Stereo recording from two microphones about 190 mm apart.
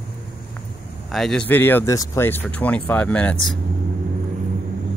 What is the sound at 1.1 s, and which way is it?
Speech, centre (ahead or behind).